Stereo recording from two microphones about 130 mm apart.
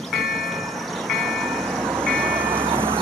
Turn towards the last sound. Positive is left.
turn(degrees=-45)  # may be behind; listen again after turning